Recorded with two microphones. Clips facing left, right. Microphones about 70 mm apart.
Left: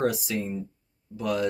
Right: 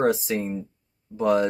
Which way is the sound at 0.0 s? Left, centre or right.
Right.